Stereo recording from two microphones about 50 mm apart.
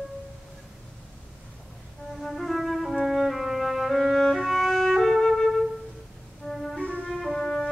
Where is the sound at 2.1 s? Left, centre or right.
Centre.